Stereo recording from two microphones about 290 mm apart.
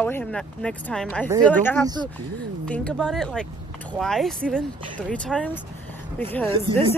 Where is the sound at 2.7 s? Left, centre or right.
Centre.